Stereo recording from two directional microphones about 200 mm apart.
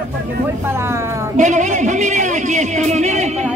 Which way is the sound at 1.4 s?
35° right (ahead or behind).